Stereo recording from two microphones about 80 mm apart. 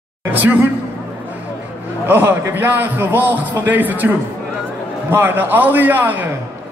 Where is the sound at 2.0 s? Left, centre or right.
Right.